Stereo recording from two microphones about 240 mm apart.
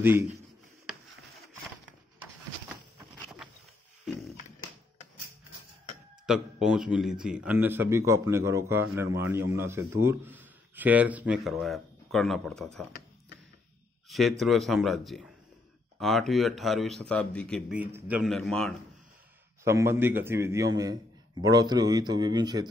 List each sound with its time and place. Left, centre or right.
0.0 s a man's voice: centre
4.1 s a sound: centre
6.2 s a man's voice: centre
14.0 s a sound: centre
14.4 s speech: centre
19.6 s a man's voice: centre